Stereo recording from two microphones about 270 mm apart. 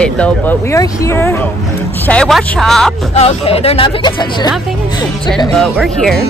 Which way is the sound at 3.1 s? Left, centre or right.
Left.